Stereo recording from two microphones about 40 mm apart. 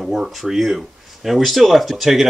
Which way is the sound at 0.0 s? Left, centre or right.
Centre.